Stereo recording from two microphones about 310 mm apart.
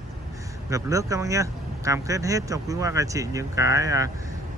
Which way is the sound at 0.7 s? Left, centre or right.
Centre.